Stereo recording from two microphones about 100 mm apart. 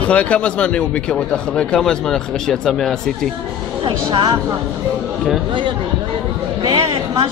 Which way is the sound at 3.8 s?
50° right (ahead or behind).